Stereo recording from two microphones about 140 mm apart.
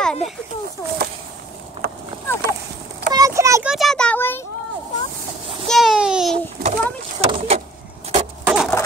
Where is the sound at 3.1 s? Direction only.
25° right (ahead or behind).